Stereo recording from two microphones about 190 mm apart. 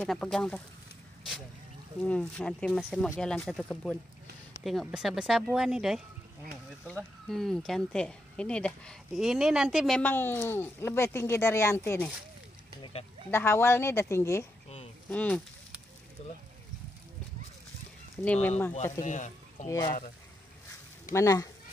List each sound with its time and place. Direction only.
0.0 s speech: 5° left (ahead or behind)
2.0 s speech: 5° left (ahead or behind)
13.3 s speech: 10° left (ahead or behind)
16.2 s speech: 30° left (ahead or behind)
18.2 s speech: 5° left (ahead or behind)
19.0 s speech: 40° left (ahead or behind)
19.7 s speech: 20° left (ahead or behind)
21.1 s speech: 15° left (ahead or behind)